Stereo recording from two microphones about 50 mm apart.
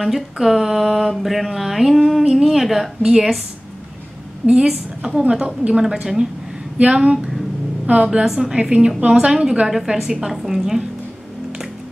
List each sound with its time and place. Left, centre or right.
0.0 s speech: centre
3.0 s a woman's voice: centre
4.5 s a woman's voice: centre
6.8 s a woman's voice: right
8.3 s a woman's voice: centre